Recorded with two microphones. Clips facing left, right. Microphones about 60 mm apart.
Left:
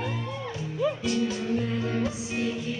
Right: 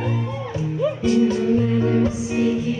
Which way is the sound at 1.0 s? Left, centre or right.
Centre.